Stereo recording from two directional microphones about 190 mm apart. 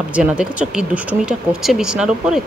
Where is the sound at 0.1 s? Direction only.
5° right (ahead or behind).